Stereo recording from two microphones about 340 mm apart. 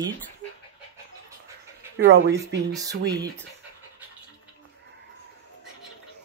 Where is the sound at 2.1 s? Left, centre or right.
Right.